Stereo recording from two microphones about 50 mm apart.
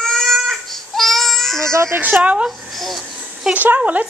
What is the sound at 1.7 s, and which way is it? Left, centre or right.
Speech, right.